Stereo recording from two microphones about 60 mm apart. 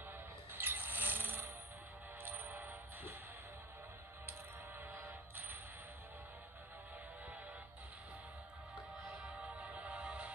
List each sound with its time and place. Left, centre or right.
0.5 s a sound: right
2.2 s music: right
4.3 s music: right
9.3 s music: right